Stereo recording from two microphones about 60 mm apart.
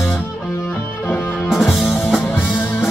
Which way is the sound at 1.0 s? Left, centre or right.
Left.